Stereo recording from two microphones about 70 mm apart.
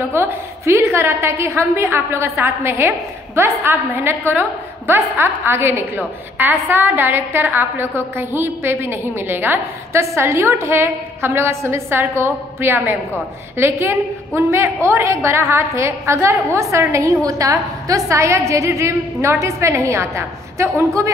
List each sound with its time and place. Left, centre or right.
0.1 s a woman's voice: right
9.9 s a woman's voice: right